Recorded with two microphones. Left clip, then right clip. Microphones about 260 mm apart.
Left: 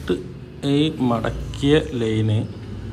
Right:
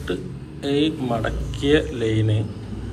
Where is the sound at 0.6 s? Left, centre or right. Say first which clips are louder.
Left 1 dB; left.